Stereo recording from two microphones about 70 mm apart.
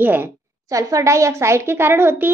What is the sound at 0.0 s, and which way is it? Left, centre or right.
Speech, right.